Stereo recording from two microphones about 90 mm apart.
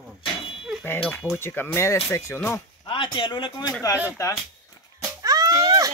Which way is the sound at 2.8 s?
65° left (ahead or behind).